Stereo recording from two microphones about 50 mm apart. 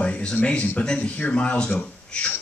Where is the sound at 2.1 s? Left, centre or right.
Left.